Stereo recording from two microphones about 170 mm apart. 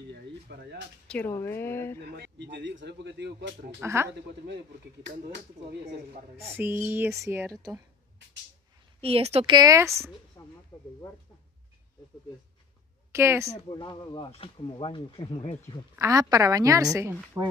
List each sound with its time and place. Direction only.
0.1 s a sound: 75° right (ahead or behind)
1.0 s speech: 10° left (ahead or behind)
2.0 s speech: 80° right
3.8 s speech: 15° right (ahead or behind)
6.3 s speech: 15° right (ahead or behind)
9.0 s a woman's voice: 35° right (ahead or behind)
9.6 s a woman's voice: 20° right (ahead or behind)
10.4 s speech: 25° left (ahead or behind)
13.1 s speech: 15° right (ahead or behind)
13.5 s speech: 30° left (ahead or behind)
16.0 s a woman's voice: 20° right (ahead or behind)